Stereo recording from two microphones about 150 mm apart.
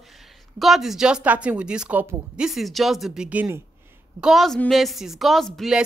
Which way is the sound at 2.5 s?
Centre (ahead or behind).